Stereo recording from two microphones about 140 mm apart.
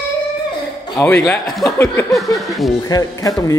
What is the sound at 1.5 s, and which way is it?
Speech, centre (ahead or behind).